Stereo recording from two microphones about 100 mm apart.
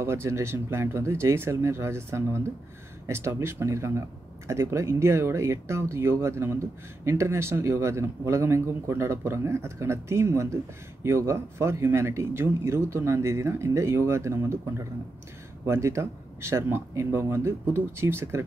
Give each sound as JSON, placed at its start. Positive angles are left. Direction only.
{"t": 0.0, "sound": "speech", "side_deg": -25}